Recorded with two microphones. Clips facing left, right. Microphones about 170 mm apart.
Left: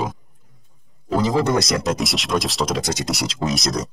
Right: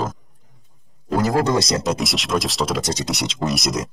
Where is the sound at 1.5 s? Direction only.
25° right (ahead or behind).